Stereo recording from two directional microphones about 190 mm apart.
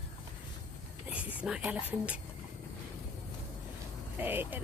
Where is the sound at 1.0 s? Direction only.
5° right (ahead or behind).